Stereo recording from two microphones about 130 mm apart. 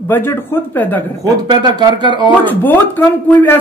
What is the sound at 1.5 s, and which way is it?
Speech, 35° right (ahead or behind).